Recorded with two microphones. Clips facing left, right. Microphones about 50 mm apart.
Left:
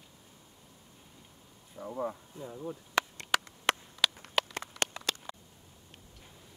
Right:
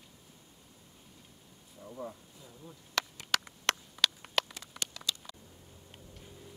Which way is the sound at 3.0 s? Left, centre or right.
Centre.